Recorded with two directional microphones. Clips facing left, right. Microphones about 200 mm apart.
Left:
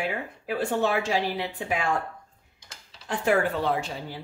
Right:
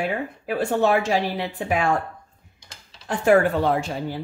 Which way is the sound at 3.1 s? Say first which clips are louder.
Right 6 dB; 50° right (ahead or behind).